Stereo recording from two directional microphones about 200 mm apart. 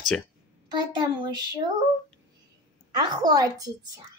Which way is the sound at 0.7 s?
20° right (ahead or behind).